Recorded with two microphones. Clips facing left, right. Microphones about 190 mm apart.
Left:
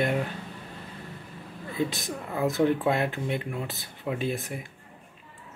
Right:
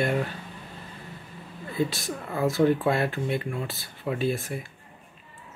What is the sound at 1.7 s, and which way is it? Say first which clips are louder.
Speech: right 2 dB; 20° left (ahead or behind).